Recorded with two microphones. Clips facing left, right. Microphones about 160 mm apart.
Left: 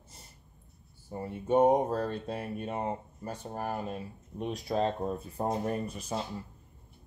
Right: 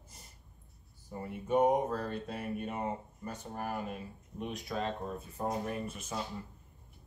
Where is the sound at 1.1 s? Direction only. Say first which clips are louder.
Left 4 dB; 30° left (ahead or behind).